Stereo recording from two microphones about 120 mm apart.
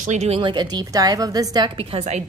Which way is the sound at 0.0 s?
80° right.